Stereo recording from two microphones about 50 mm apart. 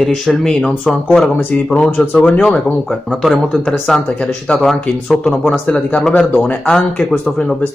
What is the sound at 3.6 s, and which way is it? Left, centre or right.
Speech, centre.